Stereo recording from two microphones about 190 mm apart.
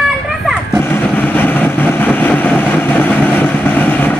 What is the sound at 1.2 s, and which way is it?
Vehicle, 10° left (ahead or behind).